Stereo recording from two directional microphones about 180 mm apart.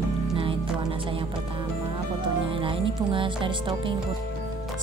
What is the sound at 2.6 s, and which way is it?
Speech, 30° right (ahead or behind).